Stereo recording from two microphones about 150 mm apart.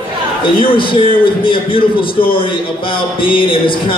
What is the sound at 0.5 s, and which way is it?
Speech, 35° left (ahead or behind).